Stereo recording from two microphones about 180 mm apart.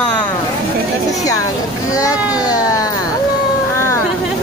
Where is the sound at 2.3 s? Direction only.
20° left (ahead or behind).